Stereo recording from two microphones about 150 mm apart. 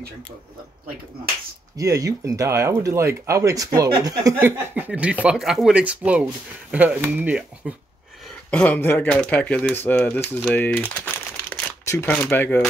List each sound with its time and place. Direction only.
1.8 s speech: 20° right (ahead or behind)
4.4 s speech: 15° right (ahead or behind)
7.6 s a sound: 5° right (ahead or behind)
8.5 s speech: 10° left (ahead or behind)